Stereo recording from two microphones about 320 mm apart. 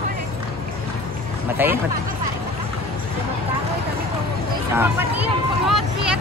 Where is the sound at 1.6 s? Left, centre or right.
Centre.